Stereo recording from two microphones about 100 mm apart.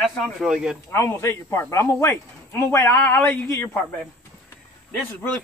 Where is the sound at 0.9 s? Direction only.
25° left (ahead or behind).